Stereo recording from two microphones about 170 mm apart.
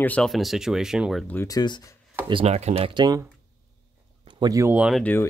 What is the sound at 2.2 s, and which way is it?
Speech, 35° right (ahead or behind).